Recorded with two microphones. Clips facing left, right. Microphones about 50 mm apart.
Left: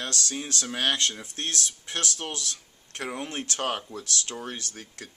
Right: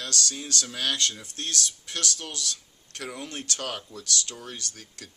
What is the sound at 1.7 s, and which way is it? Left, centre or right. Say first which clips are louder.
Speech: even; left.